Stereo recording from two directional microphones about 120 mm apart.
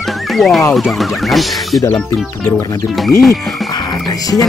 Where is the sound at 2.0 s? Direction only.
15° left (ahead or behind).